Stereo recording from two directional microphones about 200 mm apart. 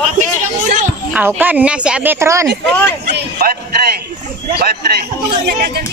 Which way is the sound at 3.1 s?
50° right (ahead or behind).